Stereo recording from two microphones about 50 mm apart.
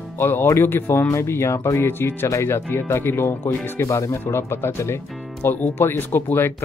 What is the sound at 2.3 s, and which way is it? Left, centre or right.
Speech, left.